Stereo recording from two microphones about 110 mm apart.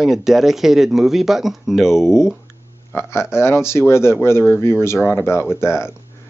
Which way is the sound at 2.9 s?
20° left (ahead or behind).